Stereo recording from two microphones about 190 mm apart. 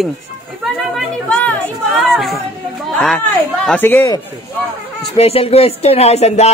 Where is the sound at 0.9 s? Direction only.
5° left (ahead or behind).